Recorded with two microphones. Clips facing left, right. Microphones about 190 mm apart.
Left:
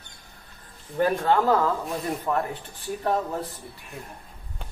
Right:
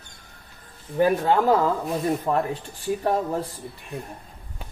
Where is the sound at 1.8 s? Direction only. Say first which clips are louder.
Right 5 dB; centre (ahead or behind).